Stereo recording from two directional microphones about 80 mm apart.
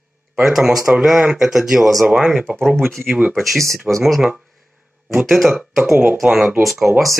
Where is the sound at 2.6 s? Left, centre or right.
Centre.